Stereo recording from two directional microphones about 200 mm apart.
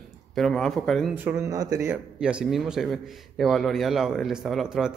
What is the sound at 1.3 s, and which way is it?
Speech, 15° right (ahead or behind).